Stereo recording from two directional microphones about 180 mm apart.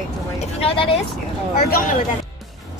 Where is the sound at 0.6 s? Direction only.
30° left (ahead or behind).